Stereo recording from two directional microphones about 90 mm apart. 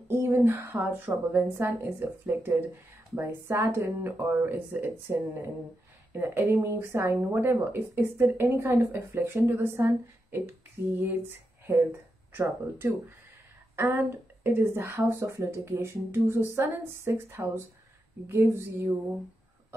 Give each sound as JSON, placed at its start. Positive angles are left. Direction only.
{"t": 0.1, "sound": "speech", "side_deg": -30}